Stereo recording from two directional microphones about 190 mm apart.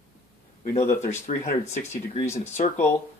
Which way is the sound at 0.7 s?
40° left (ahead or behind).